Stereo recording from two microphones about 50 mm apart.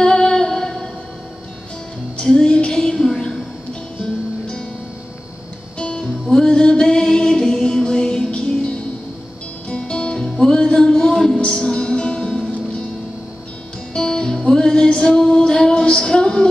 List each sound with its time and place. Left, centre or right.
0.0 s music: centre
2.1 s a sound: centre
4.0 s music: centre
5.8 s music: centre
13.9 s music: centre